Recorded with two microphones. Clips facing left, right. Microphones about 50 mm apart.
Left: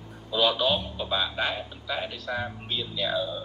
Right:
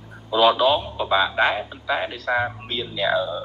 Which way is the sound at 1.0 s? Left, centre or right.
Right.